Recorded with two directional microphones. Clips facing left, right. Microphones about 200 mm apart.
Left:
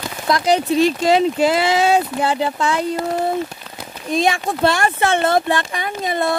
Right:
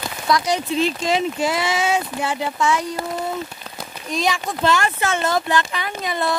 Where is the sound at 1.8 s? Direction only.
35° left (ahead or behind).